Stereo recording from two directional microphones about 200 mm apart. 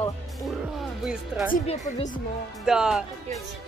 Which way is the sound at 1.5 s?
35° left (ahead or behind).